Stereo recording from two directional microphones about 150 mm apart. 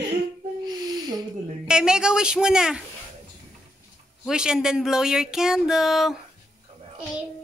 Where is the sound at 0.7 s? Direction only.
25° right (ahead or behind).